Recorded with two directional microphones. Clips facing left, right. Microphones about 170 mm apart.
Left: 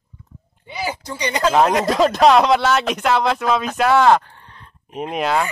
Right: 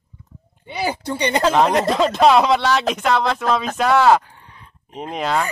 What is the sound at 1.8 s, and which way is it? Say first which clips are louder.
Speech: left 1 dB; 5° left (ahead or behind).